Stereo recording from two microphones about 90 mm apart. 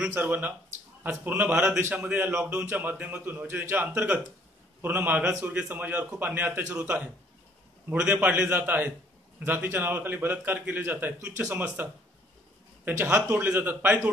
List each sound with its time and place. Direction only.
0.1 s a man's voice: 20° right (ahead or behind)